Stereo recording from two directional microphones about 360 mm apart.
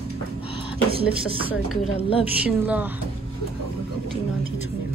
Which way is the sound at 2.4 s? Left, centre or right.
Centre.